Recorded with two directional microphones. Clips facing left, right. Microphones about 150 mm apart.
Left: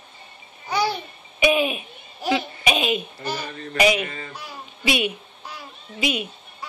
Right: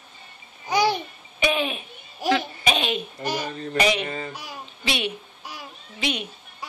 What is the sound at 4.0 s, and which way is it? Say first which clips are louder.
Speech: right 1 dB; 30° right (ahead or behind).